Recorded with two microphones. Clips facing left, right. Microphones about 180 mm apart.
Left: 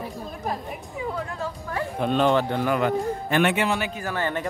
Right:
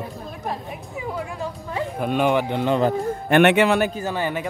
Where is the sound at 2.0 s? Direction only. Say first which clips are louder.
Even; 10° right (ahead or behind).